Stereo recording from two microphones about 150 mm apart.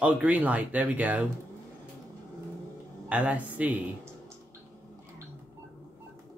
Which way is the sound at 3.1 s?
10° right (ahead or behind).